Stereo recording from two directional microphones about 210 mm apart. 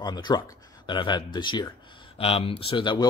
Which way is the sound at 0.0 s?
20° left (ahead or behind).